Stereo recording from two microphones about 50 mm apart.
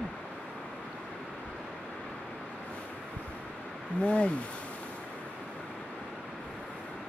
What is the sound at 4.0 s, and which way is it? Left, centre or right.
Speech, left.